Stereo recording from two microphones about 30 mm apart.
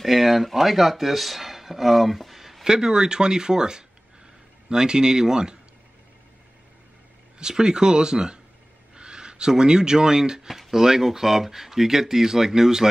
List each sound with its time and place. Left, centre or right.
0.0 s speech: centre
2.6 s speech: centre
7.3 s speech: right
10.5 s speech: centre